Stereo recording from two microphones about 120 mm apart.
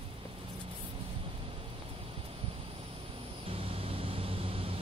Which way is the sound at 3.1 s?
55° right (ahead or behind).